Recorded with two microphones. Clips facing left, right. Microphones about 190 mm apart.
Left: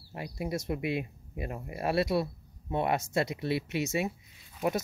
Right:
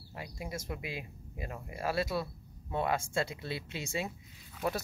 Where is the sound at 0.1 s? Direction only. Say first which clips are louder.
Left 7 dB; 25° left (ahead or behind).